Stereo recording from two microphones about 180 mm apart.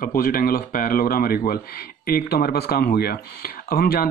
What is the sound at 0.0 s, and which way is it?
Speech, 50° left (ahead or behind).